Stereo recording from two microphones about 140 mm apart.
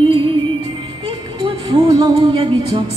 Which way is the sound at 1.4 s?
30° right (ahead or behind).